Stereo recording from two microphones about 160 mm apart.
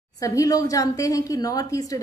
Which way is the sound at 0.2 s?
20° left (ahead or behind).